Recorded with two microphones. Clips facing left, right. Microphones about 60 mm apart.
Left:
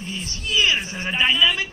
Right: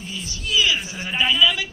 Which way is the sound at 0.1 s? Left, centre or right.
Left.